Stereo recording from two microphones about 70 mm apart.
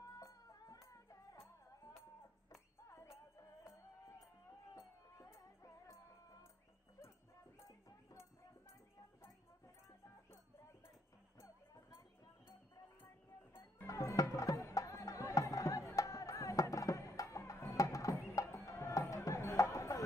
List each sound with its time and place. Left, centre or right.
0.0 s music: left
2.9 s music: left
4.7 s music: left
7.5 s music: left
9.8 s music: left
13.0 s music: left
13.8 s music: left